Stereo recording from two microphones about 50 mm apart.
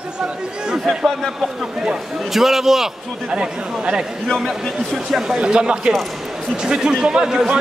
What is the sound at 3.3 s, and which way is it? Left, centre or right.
Speech, centre.